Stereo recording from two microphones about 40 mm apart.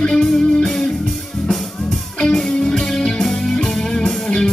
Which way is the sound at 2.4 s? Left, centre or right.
Centre.